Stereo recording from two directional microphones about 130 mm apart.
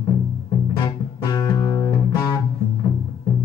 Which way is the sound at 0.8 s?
35° left (ahead or behind).